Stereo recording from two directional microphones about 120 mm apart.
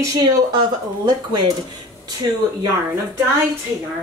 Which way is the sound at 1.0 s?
40° right (ahead or behind).